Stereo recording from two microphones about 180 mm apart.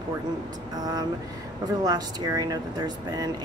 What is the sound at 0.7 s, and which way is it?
Speech, 20° right (ahead or behind).